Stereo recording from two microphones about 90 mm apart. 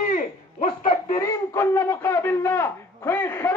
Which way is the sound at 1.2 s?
35° left (ahead or behind).